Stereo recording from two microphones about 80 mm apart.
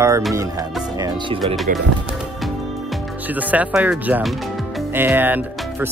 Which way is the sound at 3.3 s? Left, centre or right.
Centre.